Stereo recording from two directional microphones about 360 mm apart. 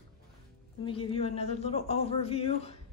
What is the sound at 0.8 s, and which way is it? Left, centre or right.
Speech, centre.